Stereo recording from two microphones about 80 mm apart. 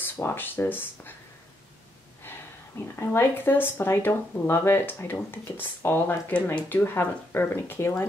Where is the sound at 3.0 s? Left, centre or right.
Left.